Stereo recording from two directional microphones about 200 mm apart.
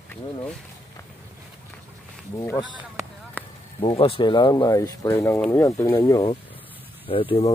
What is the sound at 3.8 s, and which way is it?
Speech, 30° left (ahead or behind).